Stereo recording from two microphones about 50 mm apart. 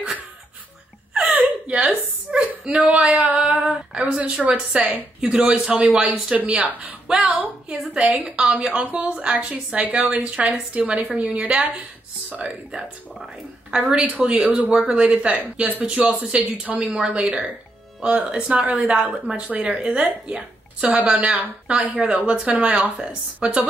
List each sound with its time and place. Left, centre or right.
1.1 s whimper: right
3.9 s a sound: centre
4.2 s a woman's voice: right
5.4 s a woman's voice: right
8.1 s a woman's voice: right
8.4 s a woman's voice: right
9.8 s a woman's voice: right
16.8 s a woman's voice: centre